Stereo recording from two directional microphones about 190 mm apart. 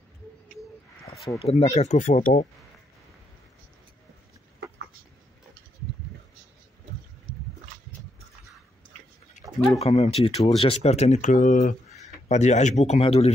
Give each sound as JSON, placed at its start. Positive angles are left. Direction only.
{"t": 1.4, "sound": "speech", "side_deg": 35}
{"t": 9.8, "sound": "speech", "side_deg": 35}